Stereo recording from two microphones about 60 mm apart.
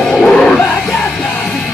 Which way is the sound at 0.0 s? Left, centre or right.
Centre.